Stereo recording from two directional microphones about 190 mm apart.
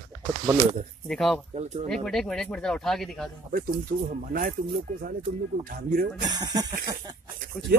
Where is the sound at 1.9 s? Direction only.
Centre (ahead or behind).